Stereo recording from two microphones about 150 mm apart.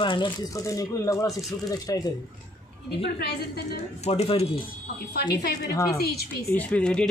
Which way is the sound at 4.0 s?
40° left (ahead or behind).